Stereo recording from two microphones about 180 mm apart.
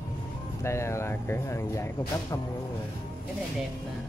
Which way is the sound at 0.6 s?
15° left (ahead or behind).